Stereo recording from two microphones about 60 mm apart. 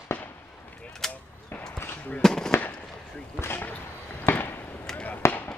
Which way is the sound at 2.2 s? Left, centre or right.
Centre.